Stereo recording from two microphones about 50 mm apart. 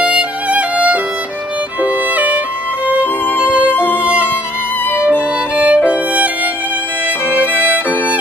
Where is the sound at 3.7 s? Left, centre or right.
Left.